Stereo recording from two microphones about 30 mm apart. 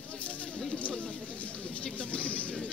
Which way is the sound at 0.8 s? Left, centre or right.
Left.